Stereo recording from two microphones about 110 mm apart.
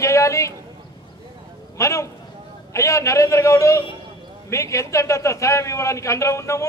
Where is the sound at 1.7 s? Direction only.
30° left (ahead or behind).